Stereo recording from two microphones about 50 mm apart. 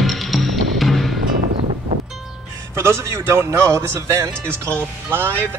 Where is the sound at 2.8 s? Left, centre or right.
Right.